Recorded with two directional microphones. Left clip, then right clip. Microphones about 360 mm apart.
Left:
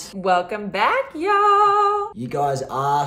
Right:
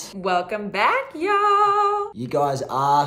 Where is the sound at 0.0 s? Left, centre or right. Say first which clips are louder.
Left 3 dB; centre.